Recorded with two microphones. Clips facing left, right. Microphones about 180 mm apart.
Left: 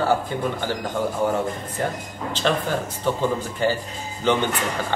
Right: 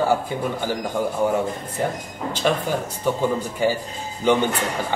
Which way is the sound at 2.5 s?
10° right (ahead or behind).